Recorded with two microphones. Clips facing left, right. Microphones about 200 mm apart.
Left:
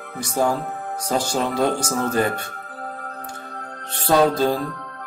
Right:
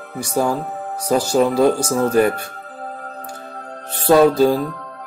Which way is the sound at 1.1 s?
5° right (ahead or behind).